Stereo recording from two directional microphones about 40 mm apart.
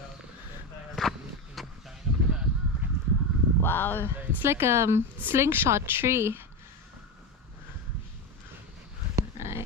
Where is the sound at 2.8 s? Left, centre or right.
Right.